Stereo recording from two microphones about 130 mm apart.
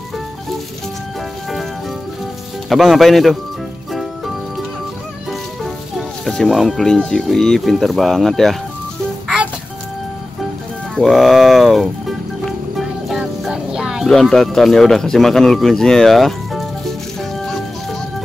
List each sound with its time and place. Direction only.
2.7 s speech: centre (ahead or behind)
5.6 s speech: centre (ahead or behind)
11.0 s music: centre (ahead or behind)